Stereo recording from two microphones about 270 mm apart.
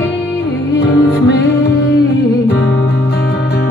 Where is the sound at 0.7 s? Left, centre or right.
Left.